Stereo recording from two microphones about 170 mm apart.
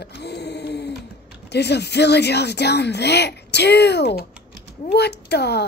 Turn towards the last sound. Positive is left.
turn(degrees=75)  # may be behind; listen again after turning